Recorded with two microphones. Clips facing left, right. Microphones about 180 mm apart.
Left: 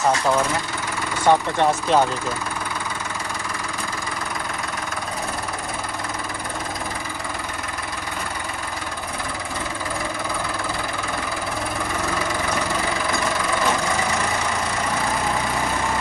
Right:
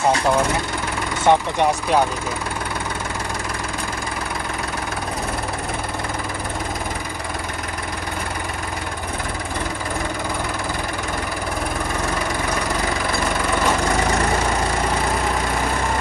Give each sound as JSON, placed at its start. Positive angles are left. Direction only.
{"t": 1.2, "sound": "speech", "side_deg": -20}